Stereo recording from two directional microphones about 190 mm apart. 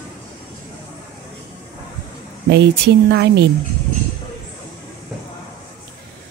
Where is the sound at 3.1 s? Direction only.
60° right (ahead or behind).